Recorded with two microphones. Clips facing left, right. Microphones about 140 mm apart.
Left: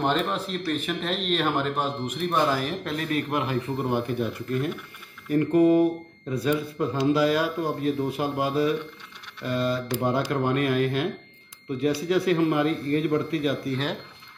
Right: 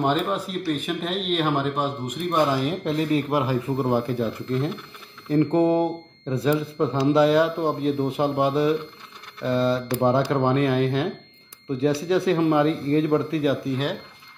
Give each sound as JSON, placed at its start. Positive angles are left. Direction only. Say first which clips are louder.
{"t": 0.0, "sound": "speech", "louder": "right 2 dB", "side_deg": -5}
{"t": 2.3, "sound": "speech", "louder": "right 3 dB", "side_deg": -20}